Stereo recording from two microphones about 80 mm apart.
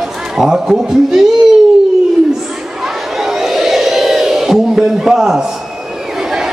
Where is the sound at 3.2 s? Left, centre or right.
Centre.